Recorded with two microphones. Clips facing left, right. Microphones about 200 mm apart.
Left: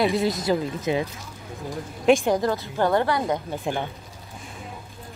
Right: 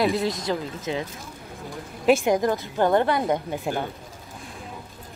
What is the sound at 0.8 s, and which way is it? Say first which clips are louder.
Speech: left 4 dB; 15° left (ahead or behind).